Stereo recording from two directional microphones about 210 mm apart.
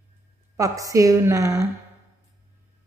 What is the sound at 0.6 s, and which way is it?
A woman's voice, 15° right (ahead or behind).